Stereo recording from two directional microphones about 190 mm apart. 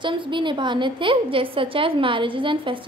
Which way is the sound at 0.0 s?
25° right (ahead or behind).